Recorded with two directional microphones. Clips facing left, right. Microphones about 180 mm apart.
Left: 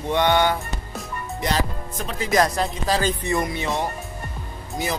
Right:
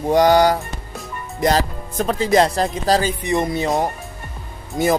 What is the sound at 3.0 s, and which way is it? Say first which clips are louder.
Speech: right 3 dB; 15° right (ahead or behind).